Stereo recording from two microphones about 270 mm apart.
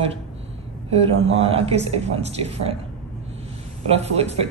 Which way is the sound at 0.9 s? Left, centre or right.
Right.